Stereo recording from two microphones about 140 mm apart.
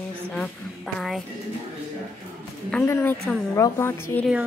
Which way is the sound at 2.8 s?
15° left (ahead or behind).